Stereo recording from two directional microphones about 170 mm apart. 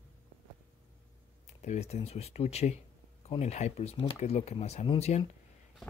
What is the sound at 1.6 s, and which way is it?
Speech, 40° left (ahead or behind).